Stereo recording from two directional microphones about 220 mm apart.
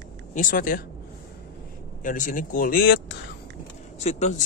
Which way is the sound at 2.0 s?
35° left (ahead or behind).